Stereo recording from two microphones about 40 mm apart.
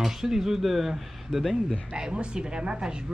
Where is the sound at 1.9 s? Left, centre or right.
Right.